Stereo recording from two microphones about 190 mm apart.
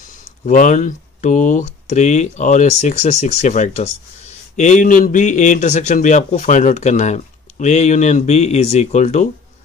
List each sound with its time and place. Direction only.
0.5 s a man's voice: 40° left (ahead or behind)